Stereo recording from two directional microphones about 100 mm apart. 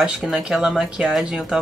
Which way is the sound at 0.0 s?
10° right (ahead or behind).